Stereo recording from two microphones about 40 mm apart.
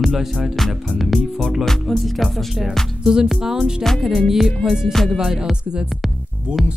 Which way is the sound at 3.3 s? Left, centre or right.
Centre.